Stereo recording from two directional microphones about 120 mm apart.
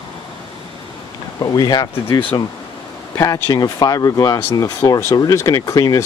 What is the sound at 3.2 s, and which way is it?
Speech, 30° left (ahead or behind).